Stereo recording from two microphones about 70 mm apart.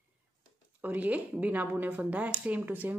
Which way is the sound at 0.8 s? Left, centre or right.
Right.